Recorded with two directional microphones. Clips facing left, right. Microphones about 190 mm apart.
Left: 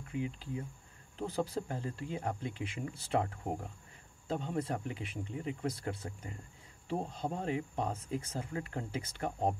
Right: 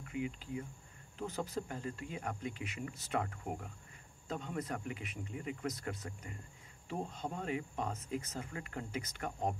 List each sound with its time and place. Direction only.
0.1 s speech: 30° left (ahead or behind)